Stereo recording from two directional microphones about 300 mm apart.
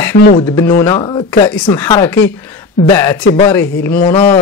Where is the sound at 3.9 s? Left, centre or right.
Left.